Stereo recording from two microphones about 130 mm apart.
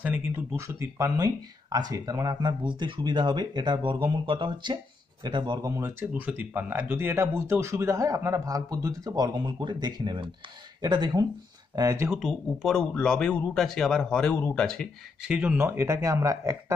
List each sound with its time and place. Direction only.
0.6 s speech: 25° right (ahead or behind)
12.1 s speech: centre (ahead or behind)
15.2 s speech: 10° right (ahead or behind); by 16.7 s 25° right (ahead or behind)